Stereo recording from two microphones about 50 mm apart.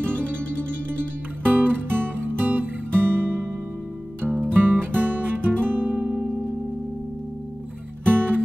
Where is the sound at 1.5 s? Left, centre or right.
Right.